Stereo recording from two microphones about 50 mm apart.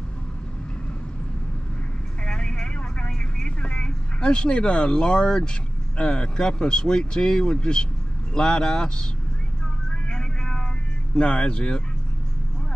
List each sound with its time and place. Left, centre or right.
2.2 s vehicle: centre
5.9 s speech: left
9.8 s vehicle: centre
11.1 s speech: left